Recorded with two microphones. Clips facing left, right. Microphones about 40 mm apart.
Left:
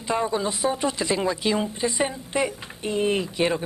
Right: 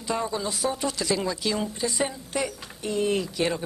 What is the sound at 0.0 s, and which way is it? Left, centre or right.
Speech, left.